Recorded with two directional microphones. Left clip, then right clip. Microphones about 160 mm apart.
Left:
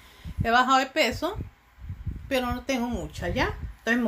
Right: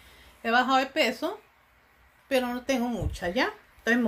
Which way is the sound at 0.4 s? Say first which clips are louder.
Left 2 dB; 10° left (ahead or behind).